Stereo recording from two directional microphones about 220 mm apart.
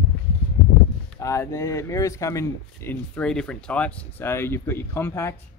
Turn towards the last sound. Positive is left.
turn(degrees=10)  # may be behind; listen again after turning